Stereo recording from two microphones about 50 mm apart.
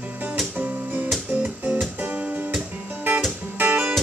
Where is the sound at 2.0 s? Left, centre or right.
Right.